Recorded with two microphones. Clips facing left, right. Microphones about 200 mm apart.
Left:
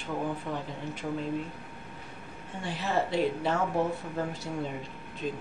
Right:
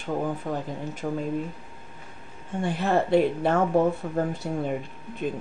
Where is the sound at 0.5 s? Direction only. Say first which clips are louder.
Right 4 dB; 45° right (ahead or behind).